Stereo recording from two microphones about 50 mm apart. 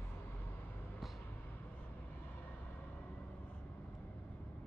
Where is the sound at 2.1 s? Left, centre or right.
Left.